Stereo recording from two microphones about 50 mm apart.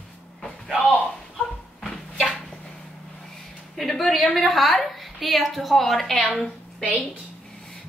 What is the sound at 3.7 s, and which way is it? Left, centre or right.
A woman's voice, centre.